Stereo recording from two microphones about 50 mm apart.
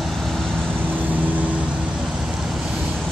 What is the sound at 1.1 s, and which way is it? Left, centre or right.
Vehicle, right.